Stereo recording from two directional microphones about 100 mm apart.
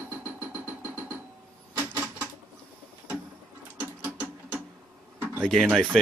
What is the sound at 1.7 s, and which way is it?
Typewriter, 20° right (ahead or behind).